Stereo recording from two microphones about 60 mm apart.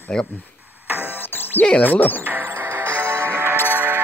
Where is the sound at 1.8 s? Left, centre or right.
Left.